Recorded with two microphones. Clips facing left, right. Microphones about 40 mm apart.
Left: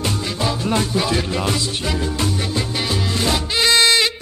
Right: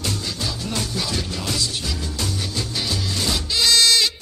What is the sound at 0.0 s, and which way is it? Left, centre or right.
Music, left.